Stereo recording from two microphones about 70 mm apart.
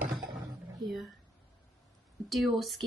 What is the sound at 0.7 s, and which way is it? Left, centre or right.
Speech, centre.